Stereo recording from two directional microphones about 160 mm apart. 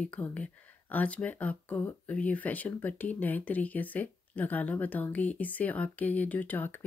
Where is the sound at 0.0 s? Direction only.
10° left (ahead or behind).